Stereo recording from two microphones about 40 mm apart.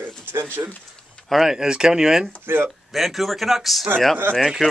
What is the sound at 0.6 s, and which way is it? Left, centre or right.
Speech, right.